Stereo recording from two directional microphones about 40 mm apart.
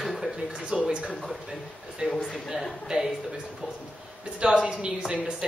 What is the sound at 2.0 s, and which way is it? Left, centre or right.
A woman's voice, centre.